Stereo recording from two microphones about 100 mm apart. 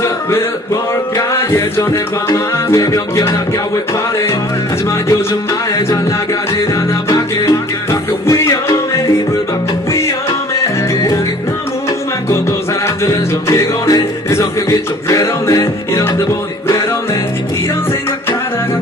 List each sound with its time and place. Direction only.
1.1 s music: 30° left (ahead or behind)
12.3 s music: 25° left (ahead or behind)